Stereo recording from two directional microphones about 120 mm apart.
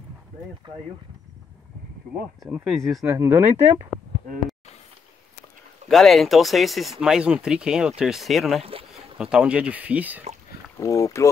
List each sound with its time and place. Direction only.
2.6 s speech: 5° left (ahead or behind)
3.2 s speech: 20° right (ahead or behind)
5.9 s speech: centre (ahead or behind)
10.8 s speech: 25° left (ahead or behind)